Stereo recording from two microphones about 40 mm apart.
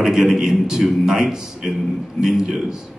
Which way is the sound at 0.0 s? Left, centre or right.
Centre.